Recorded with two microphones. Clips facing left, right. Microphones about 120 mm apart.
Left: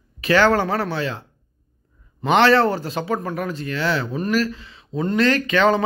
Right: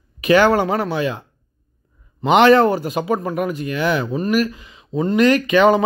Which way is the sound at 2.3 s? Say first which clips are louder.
Right 4 dB; 15° right (ahead or behind).